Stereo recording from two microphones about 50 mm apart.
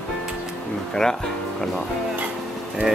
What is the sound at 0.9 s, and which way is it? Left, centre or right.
Speech, centre.